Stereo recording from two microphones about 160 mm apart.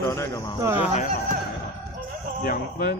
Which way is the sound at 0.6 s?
15° right (ahead or behind).